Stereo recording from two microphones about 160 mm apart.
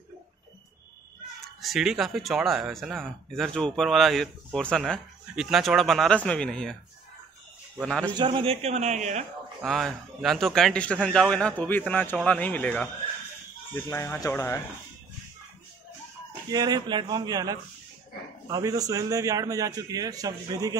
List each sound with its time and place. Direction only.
1.6 s speech: centre (ahead or behind)
7.8 s speech: 5° left (ahead or behind)
8.1 s a man's voice: 30° right (ahead or behind); by 9.2 s 45° right (ahead or behind)
9.7 s a man's voice: centre (ahead or behind); by 14.6 s 20° left (ahead or behind)
16.4 s a man's voice: 25° right (ahead or behind)